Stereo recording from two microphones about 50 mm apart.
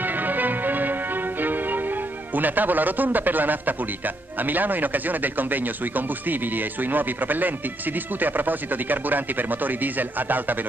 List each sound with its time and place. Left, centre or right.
0.0 s music: right